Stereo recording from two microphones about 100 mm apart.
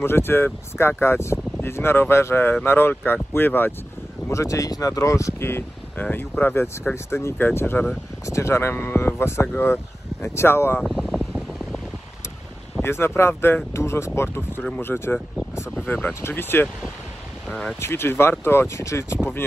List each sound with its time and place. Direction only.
0.0 s speech: 25° left (ahead or behind)
4.3 s speech: 30° left (ahead or behind)
10.8 s mechanical fan: 5° left (ahead or behind)
12.8 s speech: 25° left (ahead or behind)
17.7 s speech: 25° left (ahead or behind)